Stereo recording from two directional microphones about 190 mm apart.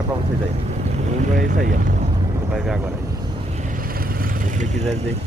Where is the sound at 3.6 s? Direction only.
45° right (ahead or behind).